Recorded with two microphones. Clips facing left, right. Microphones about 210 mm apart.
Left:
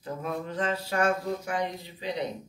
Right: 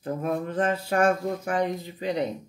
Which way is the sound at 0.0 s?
55° right (ahead or behind).